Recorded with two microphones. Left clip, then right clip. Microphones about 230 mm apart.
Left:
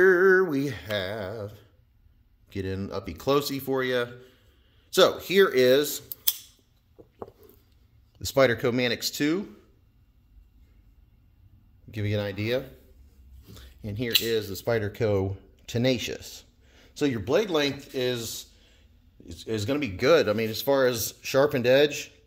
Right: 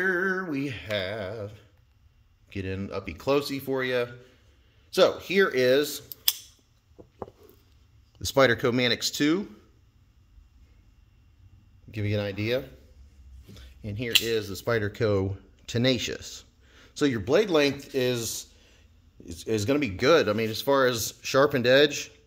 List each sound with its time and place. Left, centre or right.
0.0 s a sound: left
2.5 s speech: left
4.9 s speech: centre
8.2 s speech: centre
11.9 s speech: centre
13.6 s a sound: left
14.2 s speech: centre; by 19.9 s right
20.0 s speech: centre